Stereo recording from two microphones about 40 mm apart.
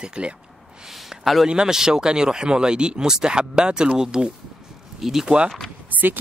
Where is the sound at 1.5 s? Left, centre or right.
Centre.